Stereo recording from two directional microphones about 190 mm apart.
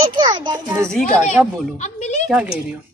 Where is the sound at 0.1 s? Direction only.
25° right (ahead or behind).